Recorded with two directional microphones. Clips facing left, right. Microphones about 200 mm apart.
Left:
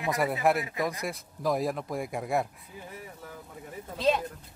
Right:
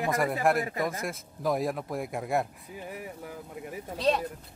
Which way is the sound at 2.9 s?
15° right (ahead or behind).